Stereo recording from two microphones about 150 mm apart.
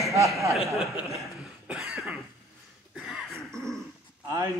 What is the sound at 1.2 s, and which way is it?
Cough, centre (ahead or behind).